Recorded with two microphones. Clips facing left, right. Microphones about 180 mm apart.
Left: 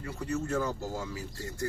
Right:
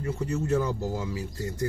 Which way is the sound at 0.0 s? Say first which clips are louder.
Right 4 dB; 20° right (ahead or behind).